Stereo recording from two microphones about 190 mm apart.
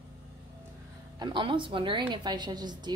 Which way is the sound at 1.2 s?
25° right (ahead or behind).